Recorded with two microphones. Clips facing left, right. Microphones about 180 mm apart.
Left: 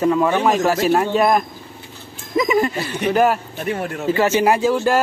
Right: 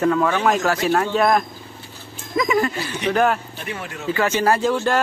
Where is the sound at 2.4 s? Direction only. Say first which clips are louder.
Left 2 dB; 20° left (ahead or behind).